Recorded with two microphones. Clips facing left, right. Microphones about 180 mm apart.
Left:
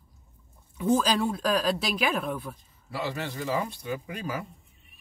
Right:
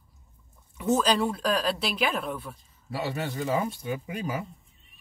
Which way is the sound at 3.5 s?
25° right (ahead or behind).